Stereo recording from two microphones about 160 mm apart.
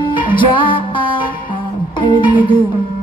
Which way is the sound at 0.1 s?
30° left (ahead or behind).